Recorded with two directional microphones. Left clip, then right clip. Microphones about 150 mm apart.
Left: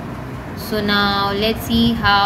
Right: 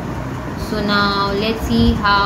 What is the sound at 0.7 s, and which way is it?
Speech, 45° left (ahead or behind).